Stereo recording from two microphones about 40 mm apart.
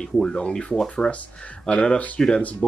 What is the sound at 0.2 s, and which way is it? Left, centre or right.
Speech, left.